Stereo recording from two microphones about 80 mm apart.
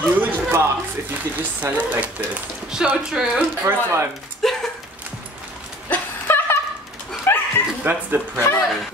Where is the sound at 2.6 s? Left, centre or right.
Centre.